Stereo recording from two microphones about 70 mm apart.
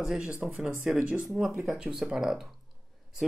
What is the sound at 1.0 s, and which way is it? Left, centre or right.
Speech, centre.